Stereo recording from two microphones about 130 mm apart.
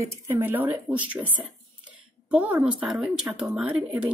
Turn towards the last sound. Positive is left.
turn(degrees=-10)  # may be behind; listen again after turning